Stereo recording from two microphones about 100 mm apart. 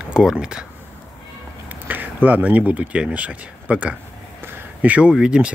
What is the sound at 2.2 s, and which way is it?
Speech, 15° right (ahead or behind).